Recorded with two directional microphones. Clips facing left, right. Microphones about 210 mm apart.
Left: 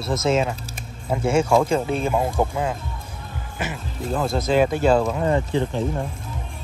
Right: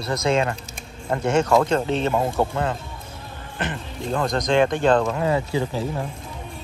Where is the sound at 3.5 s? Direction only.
5° left (ahead or behind).